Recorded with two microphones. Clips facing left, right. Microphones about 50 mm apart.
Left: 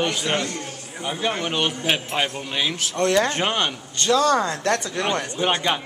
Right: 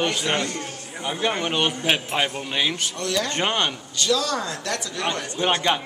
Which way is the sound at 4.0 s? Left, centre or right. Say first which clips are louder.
Left 5 dB; left.